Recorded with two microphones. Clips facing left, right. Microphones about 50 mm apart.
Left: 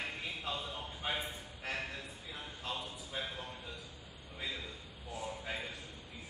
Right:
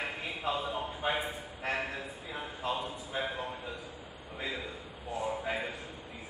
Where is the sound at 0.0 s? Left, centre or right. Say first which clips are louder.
Right 5 dB; centre.